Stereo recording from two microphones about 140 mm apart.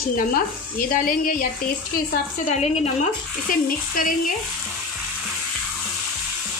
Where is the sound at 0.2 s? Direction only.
85° left.